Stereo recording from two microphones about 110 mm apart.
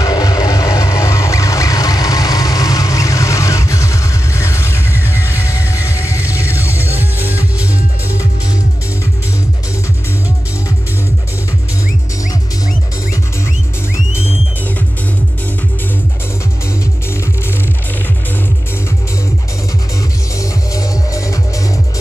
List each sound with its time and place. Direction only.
0.0 s vehicle: 30° left (ahead or behind)
6.8 s music: 15° right (ahead or behind)
13.9 s music: 25° left (ahead or behind)
20.3 s music: 30° left (ahead or behind)